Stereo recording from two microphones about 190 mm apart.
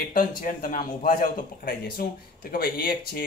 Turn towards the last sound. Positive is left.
turn(degrees=50)  # may be behind; listen again after turning